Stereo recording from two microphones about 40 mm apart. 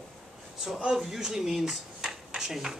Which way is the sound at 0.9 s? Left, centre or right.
Centre.